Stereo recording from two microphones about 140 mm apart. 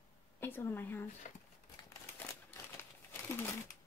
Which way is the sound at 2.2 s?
15° left (ahead or behind).